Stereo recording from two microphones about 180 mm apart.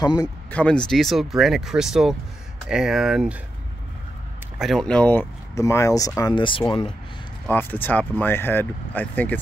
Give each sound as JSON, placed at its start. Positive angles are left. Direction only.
{"t": 0.0, "sound": "speech", "side_deg": 20}
{"t": 0.5, "sound": "speech", "side_deg": 5}
{"t": 4.6, "sound": "speech", "side_deg": 0}
{"t": 5.5, "sound": "speech", "side_deg": 15}
{"t": 7.4, "sound": "speech", "side_deg": 10}